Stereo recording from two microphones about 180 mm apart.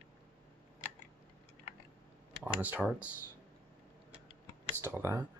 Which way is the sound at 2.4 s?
10° right (ahead or behind).